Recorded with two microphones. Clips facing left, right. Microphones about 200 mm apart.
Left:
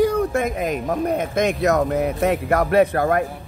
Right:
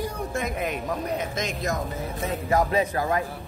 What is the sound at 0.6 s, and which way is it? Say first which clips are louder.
A man's voice: left 7 dB; 50° left (ahead or behind).